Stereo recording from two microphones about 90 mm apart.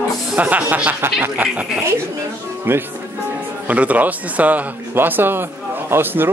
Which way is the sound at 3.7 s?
15° right (ahead or behind).